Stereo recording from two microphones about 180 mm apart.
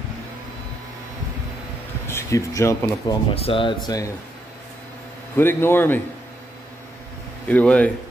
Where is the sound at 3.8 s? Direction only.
20° left (ahead or behind).